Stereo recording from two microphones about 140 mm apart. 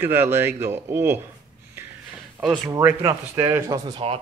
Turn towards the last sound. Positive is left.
turn(degrees=-20)  # may be behind; listen again after turning